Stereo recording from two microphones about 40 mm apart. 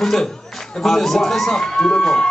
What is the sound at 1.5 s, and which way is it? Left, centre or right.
Speech, left.